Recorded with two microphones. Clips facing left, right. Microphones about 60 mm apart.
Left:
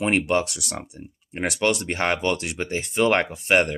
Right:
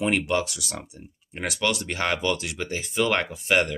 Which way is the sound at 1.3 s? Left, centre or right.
Left.